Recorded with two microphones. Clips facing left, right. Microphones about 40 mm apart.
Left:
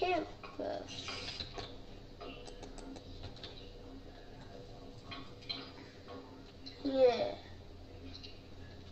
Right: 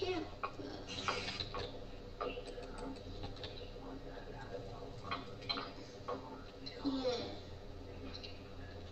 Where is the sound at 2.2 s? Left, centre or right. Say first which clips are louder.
Right 7 dB; right.